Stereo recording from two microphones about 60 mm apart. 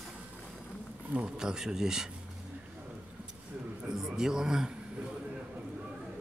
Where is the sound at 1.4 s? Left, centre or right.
Centre.